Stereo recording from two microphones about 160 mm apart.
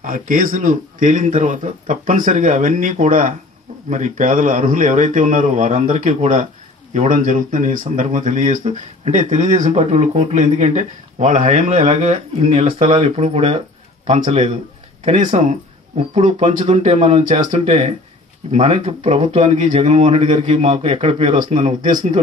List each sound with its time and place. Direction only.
0.0 s speech: 60° right (ahead or behind)